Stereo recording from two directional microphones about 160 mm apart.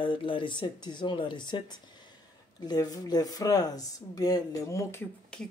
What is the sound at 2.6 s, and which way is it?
Speech, 25° left (ahead or behind).